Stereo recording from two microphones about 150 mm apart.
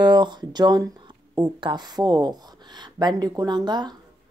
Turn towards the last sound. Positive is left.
turn(degrees=-30)  # may be behind; listen again after turning